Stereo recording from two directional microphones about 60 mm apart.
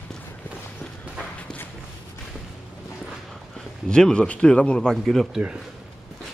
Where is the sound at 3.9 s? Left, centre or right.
Centre.